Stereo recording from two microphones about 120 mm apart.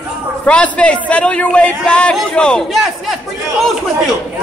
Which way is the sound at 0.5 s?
10° left (ahead or behind).